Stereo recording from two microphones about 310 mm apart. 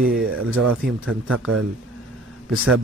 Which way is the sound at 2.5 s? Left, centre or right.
Right.